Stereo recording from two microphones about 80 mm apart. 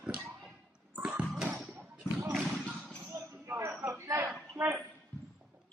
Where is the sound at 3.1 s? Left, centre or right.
Right.